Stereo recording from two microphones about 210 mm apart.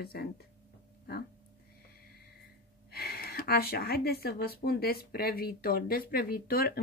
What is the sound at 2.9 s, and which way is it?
Speech, 45° left (ahead or behind).